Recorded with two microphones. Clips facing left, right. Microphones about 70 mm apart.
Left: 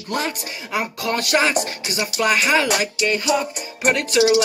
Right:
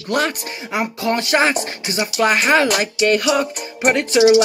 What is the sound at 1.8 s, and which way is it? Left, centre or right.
Speech, right.